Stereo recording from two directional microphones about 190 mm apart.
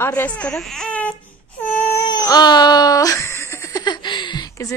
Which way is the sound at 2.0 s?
20° left (ahead or behind).